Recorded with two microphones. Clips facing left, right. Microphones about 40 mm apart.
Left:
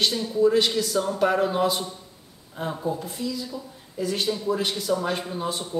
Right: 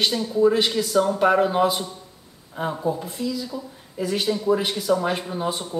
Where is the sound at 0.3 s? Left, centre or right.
Centre.